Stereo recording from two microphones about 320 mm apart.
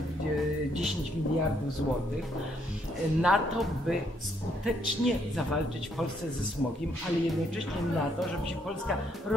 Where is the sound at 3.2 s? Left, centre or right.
Centre.